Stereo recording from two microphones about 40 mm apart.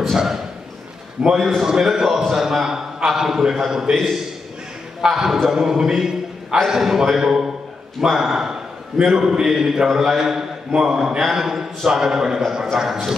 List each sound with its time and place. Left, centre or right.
0.0 s a sound: centre
1.2 s a man's voice: centre
3.9 s a man's voice: centre